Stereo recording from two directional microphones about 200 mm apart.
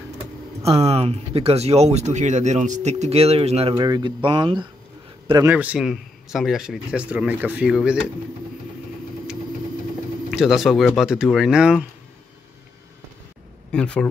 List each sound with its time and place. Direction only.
0.7 s speech: 30° right (ahead or behind)
3.7 s speech: 20° right (ahead or behind)
5.3 s a man's voice: 10° right (ahead or behind)
10.3 s a man's voice: centre (ahead or behind)
13.7 s speech: 5° left (ahead or behind)